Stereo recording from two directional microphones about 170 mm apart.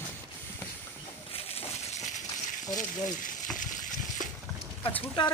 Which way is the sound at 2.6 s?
50° left (ahead or behind).